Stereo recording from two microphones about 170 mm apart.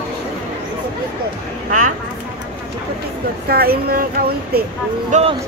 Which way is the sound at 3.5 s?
65° right (ahead or behind).